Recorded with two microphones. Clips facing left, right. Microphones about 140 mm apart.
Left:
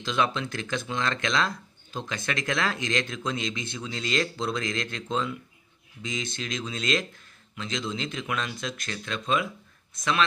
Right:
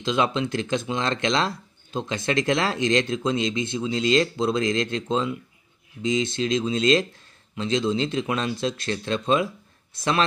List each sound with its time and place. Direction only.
0.0 s speech: 25° right (ahead or behind)